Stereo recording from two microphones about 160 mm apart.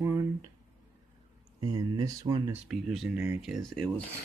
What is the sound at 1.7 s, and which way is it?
Speech, 25° right (ahead or behind).